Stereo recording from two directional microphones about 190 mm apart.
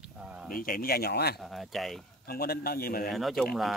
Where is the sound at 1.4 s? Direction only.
Centre (ahead or behind).